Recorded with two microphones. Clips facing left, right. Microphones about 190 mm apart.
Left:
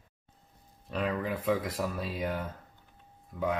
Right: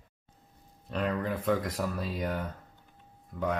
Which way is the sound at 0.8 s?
Centre (ahead or behind).